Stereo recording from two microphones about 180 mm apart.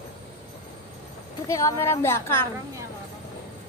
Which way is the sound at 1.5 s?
15° left (ahead or behind).